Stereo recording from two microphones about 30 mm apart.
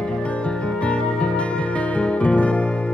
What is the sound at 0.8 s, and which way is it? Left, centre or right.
Music, left.